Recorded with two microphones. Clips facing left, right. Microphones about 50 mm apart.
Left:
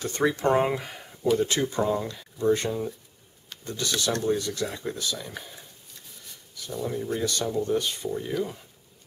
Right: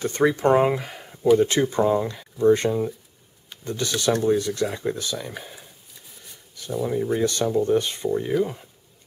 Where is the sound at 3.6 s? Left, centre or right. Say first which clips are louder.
Right 5 dB; right.